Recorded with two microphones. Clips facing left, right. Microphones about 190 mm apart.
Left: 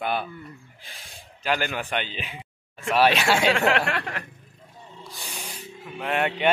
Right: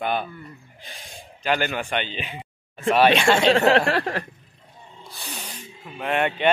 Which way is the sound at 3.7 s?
30° right (ahead or behind).